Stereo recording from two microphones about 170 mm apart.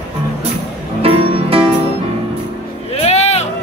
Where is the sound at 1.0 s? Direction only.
35° right (ahead or behind).